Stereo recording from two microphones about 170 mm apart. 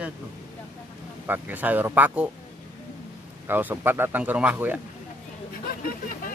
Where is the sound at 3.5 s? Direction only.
10° right (ahead or behind).